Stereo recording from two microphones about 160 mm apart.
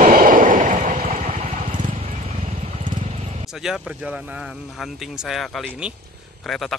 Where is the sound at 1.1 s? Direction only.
50° right (ahead or behind).